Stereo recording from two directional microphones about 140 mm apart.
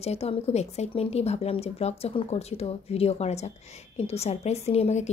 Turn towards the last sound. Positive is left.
turn(degrees=50)  # may be behind; listen again after turning